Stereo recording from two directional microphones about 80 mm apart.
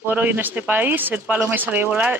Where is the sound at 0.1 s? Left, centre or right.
Right.